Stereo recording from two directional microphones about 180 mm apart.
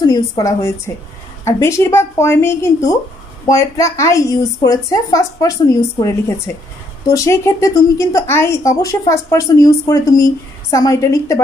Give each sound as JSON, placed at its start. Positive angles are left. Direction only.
{"t": 0.0, "sound": "a woman's voice", "side_deg": 20}